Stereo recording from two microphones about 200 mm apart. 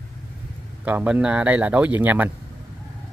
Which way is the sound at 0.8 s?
10° right (ahead or behind).